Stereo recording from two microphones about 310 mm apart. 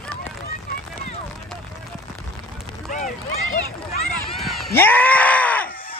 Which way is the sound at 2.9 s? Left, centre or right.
Left.